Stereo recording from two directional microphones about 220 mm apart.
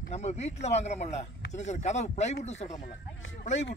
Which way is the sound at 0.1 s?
30° left (ahead or behind).